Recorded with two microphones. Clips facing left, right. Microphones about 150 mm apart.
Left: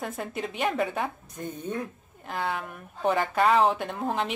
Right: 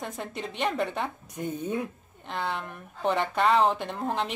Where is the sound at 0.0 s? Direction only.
5° left (ahead or behind).